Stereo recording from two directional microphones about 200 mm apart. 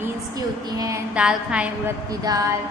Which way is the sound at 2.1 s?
15° right (ahead or behind).